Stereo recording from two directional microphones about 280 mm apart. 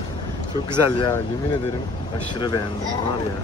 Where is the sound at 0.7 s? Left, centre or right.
Centre.